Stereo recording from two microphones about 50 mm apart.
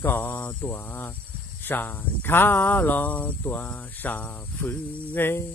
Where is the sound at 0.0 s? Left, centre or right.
Left.